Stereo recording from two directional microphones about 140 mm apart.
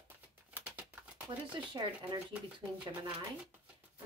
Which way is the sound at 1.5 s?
35° right (ahead or behind).